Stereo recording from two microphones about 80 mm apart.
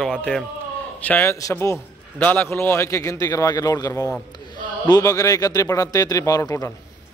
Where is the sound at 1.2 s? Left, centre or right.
Left.